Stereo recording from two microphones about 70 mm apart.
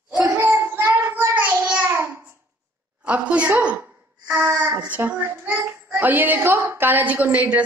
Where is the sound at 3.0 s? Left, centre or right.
Centre.